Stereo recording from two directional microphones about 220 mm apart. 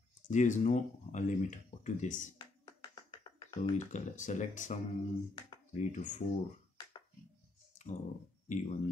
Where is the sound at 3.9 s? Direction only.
35° left (ahead or behind).